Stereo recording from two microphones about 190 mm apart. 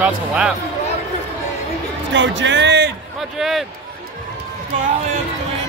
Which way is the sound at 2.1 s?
75° right (ahead or behind).